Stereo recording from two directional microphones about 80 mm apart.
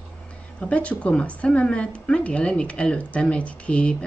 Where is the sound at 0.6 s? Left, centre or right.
Centre.